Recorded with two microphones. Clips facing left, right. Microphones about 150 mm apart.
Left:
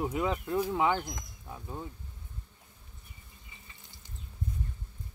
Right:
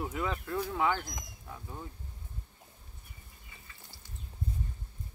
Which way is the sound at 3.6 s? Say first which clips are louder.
Right 1 dB; 20° left (ahead or behind).